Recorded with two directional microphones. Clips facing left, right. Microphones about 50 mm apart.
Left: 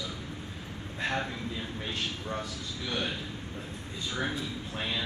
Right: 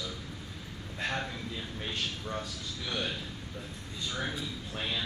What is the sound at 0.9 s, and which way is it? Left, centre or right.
A man's voice, centre.